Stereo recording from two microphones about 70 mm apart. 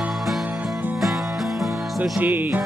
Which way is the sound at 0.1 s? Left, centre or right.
Centre.